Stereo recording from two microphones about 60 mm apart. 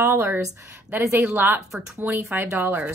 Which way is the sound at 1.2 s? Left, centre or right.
Right.